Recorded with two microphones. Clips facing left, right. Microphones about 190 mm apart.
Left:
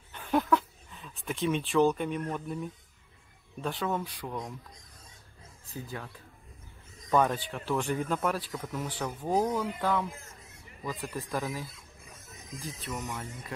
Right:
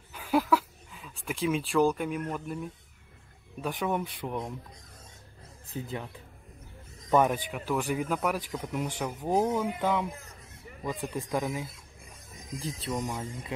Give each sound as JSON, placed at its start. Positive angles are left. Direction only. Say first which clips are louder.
{"t": 0.1, "sound": "a sound", "louder": "right 1 dB", "side_deg": -5}
{"t": 3.6, "sound": "speech", "louder": "right 2 dB", "side_deg": -15}
{"t": 5.7, "sound": "speech", "louder": "right 4 dB", "side_deg": -20}
{"t": 12.5, "sound": "speech", "louder": "right 5 dB", "side_deg": -30}